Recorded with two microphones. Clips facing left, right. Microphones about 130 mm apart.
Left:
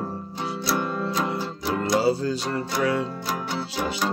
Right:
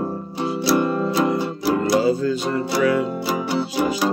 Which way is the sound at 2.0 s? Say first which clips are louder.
Right 3 dB; 30° left (ahead or behind).